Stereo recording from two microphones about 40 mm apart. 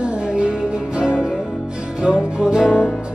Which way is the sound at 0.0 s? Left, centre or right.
Right.